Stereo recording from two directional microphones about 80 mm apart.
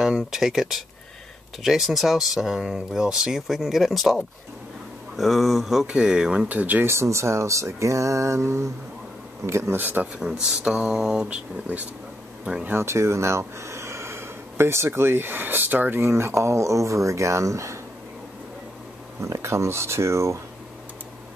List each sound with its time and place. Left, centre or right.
0.0 s speech: centre
6.5 s speech: right
6.9 s speech: right
9.8 s speech: right
10.4 s speech: centre
12.6 s speech: right
19.2 s speech: right